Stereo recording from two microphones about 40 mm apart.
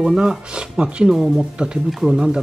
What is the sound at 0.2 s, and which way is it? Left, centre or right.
Speech, right.